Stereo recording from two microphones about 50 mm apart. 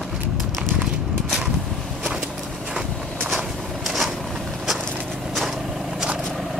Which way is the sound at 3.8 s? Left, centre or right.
Centre.